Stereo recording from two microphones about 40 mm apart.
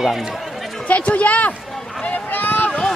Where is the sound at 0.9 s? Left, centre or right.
Left.